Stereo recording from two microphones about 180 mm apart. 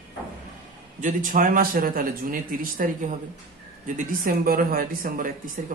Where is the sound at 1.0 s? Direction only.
45° right (ahead or behind).